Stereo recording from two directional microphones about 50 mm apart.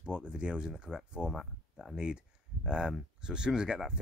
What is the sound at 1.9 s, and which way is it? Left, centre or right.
Speech, centre.